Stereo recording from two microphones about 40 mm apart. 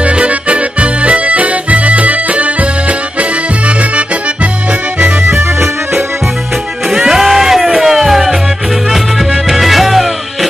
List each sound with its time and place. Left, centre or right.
0.0 s accordion: right
5.2 s music: right
6.9 s music: centre